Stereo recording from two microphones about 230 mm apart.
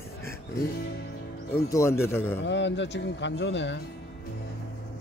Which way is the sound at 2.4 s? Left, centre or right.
Left.